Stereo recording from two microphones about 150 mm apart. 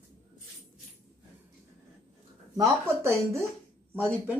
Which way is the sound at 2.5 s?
20° right (ahead or behind).